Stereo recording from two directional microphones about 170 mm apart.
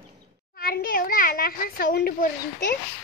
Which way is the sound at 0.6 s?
60° left (ahead or behind).